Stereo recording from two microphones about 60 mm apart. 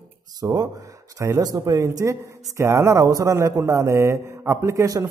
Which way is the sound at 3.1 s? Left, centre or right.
Right.